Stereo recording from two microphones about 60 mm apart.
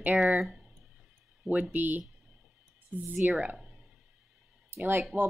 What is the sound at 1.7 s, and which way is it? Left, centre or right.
Speech, right.